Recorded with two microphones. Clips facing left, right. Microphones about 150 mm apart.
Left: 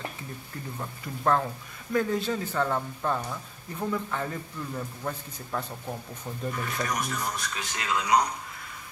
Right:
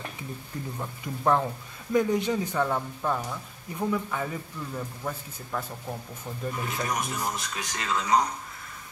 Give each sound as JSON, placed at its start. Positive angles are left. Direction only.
{"t": 1.0, "sound": "a man's voice", "side_deg": -15}
{"t": 6.5, "sound": "speech", "side_deg": -20}
{"t": 7.5, "sound": "speech", "side_deg": 5}